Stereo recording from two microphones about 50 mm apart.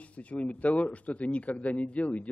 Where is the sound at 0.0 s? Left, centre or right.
Left.